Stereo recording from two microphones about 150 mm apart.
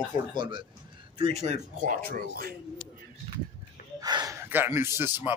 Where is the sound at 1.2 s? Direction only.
45° right (ahead or behind); by 2.6 s 85° right.